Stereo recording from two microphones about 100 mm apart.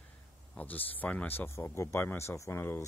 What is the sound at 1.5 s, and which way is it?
Speech, 25° left (ahead or behind).